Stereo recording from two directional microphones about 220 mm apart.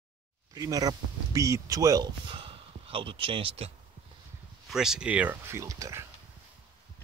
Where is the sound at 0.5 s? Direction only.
15° right (ahead or behind).